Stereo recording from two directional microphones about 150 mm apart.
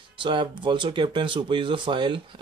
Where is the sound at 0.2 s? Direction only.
35° right (ahead or behind).